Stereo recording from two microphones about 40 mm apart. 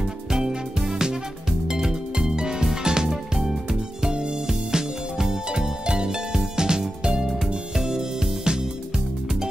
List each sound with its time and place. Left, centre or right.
0.0 s music: centre